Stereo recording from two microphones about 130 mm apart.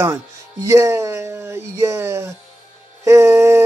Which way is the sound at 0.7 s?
20° right (ahead or behind).